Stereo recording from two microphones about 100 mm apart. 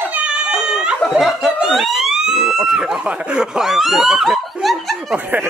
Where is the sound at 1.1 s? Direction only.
Centre (ahead or behind).